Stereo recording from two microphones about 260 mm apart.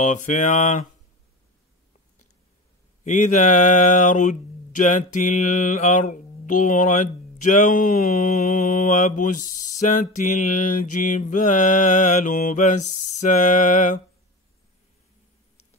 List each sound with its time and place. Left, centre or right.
0.0 s speech: left
3.0 s speech: left
10.8 s mantra: left
11.1 s speech: left